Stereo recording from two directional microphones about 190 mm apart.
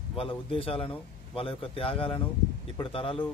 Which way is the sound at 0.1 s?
30° left (ahead or behind).